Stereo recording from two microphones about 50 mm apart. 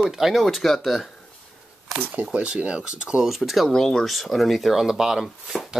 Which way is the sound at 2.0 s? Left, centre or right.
Right.